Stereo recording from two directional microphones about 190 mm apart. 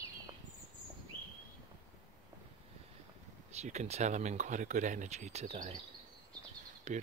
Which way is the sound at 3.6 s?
35° right (ahead or behind).